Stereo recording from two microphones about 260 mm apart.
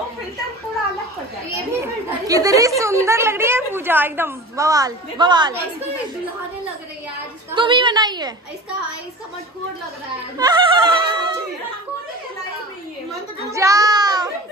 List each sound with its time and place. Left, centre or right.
1.5 s children playing: centre
2.8 s a woman's voice: centre
7.5 s a woman's voice: centre
10.3 s music: centre
13.5 s child singing: centre